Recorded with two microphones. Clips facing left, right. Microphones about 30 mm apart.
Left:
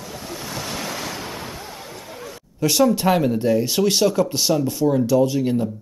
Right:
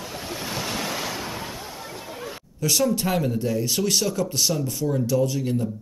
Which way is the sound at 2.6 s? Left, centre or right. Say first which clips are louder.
Left 5 dB; left.